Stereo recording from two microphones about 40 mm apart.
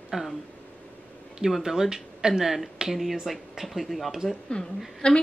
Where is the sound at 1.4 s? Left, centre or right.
Centre.